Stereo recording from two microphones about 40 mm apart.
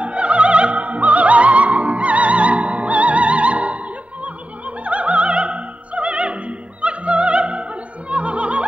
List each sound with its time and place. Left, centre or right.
0.0 s opera: right
8.1 s music: right